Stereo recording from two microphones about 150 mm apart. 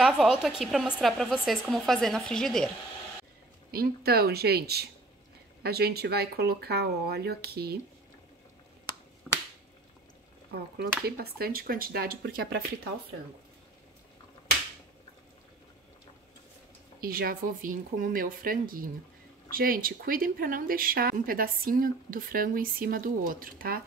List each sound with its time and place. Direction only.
0.0 s a woman's voice: 5° right (ahead or behind)
3.7 s speech: 90° right
9.3 s finger snapping: 5° left (ahead or behind)
11.1 s speech: 90° right
17.0 s speech: 80° right